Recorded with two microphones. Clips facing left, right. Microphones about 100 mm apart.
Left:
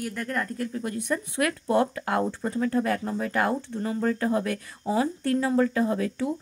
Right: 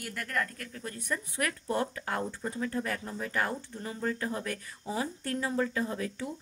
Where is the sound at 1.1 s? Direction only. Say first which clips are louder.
Left 6 dB; 45° left (ahead or behind).